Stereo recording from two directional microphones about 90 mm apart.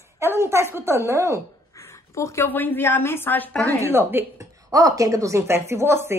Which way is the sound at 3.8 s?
25° right (ahead or behind).